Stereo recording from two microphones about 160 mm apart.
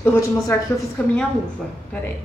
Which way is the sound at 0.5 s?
15° left (ahead or behind).